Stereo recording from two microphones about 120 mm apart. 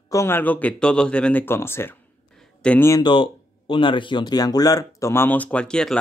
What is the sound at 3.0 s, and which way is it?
Speech, 45° left (ahead or behind).